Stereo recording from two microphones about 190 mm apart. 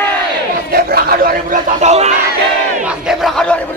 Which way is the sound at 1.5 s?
35° right (ahead or behind).